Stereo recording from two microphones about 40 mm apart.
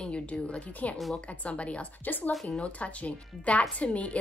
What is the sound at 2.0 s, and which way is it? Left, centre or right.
Speech, left.